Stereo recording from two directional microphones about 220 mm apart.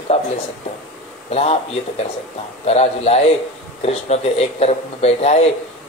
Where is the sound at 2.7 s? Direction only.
30° left (ahead or behind).